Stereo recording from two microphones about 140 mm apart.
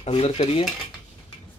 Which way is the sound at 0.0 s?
45° left (ahead or behind).